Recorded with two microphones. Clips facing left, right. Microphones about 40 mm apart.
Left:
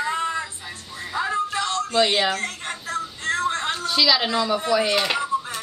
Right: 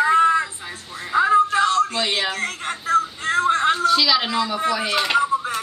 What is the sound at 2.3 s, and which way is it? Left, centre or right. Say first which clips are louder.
Speech: right 3 dB; centre.